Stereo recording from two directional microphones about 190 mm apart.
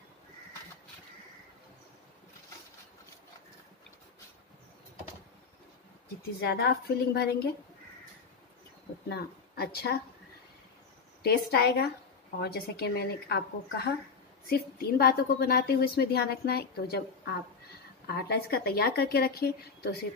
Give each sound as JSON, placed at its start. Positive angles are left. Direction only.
{"t": 6.4, "sound": "a woman's voice", "side_deg": 60}
{"t": 9.1, "sound": "speech", "side_deg": 55}
{"t": 11.2, "sound": "a woman's voice", "side_deg": 55}
{"t": 18.0, "sound": "a woman's voice", "side_deg": 55}